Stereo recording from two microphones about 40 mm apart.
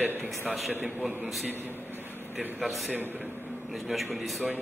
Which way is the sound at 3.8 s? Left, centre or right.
Centre.